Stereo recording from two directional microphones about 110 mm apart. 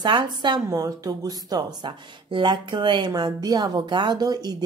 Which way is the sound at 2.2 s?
45° right (ahead or behind).